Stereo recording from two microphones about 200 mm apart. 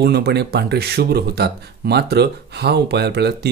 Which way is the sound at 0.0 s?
55° right (ahead or behind).